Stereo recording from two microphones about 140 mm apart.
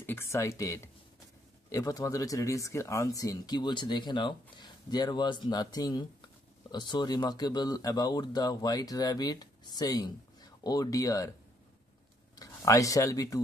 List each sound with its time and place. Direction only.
0.0 s speech: 15° left (ahead or behind)
12.4 s speech: 25° left (ahead or behind)